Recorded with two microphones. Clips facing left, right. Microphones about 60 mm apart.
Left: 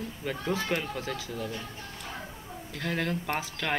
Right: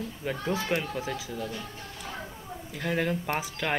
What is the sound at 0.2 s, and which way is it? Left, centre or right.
Speech, centre.